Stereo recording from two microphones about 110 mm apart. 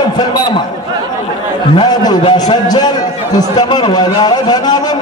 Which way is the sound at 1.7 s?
40° left (ahead or behind).